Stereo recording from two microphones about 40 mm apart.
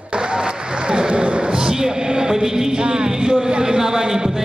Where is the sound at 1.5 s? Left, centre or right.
Centre.